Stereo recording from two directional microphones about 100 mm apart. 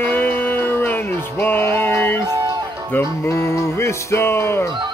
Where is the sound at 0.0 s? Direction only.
20° left (ahead or behind).